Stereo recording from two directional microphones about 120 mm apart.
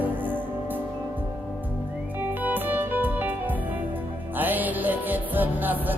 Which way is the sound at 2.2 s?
15° right (ahead or behind).